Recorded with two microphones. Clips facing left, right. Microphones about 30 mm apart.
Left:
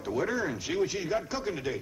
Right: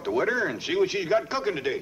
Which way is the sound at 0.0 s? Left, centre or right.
Right.